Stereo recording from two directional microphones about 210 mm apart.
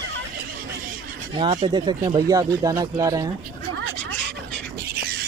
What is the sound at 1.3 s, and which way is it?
Speech, 25° right (ahead or behind).